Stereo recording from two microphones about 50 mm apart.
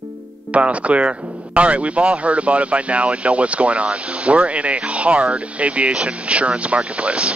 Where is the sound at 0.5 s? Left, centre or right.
Right.